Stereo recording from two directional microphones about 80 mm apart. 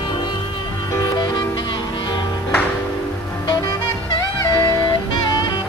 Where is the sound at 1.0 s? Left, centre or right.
Left.